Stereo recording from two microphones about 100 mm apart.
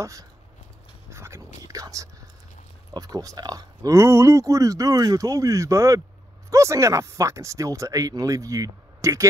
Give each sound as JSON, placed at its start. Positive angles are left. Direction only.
{"t": 0.0, "sound": "speech", "side_deg": -35}
{"t": 1.1, "sound": "whispering", "side_deg": -30}
{"t": 2.9, "sound": "speech", "side_deg": -40}